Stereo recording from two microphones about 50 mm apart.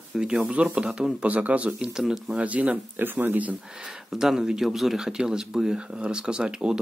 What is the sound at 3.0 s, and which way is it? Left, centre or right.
Speech, right.